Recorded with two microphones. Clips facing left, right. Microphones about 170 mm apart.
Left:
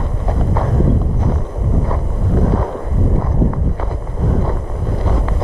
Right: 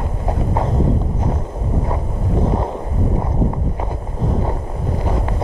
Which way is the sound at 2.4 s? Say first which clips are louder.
Left 1 dB; 25° right (ahead or behind).